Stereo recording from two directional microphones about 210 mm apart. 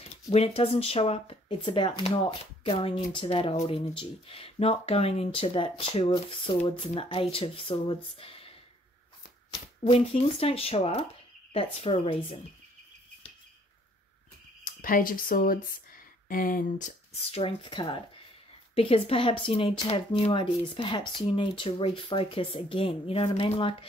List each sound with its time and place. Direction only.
0.3 s speech: 30° left (ahead or behind)
14.6 s speech: 40° left (ahead or behind); by 23.9 s 25° left (ahead or behind)